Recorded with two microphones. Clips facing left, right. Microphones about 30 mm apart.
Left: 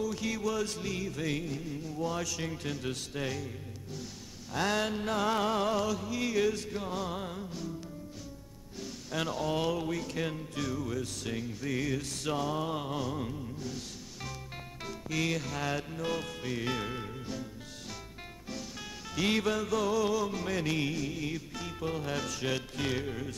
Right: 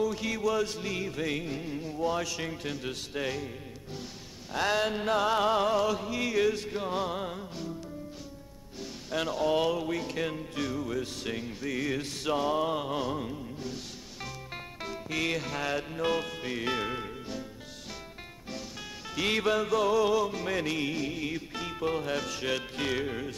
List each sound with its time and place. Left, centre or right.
0.0 s music: centre
2.0 s music: centre
8.7 s music: centre
19.1 s music: centre